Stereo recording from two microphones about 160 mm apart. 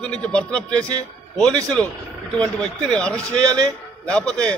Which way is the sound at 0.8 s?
25° right (ahead or behind).